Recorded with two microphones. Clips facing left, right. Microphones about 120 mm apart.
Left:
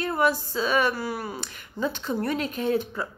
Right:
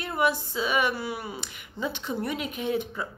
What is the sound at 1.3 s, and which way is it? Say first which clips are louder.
A woman's voice: left 4 dB; 15° right (ahead or behind).